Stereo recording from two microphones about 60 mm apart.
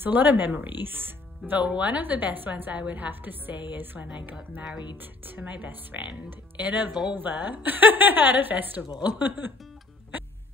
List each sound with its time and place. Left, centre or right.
0.0 s a woman's voice: right